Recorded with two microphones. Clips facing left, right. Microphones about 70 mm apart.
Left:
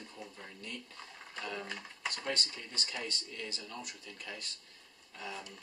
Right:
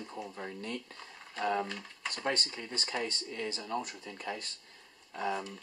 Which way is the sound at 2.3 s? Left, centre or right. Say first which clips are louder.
Right 7 dB; right.